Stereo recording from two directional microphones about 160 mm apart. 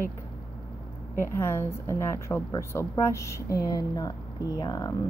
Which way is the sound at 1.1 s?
15° left (ahead or behind).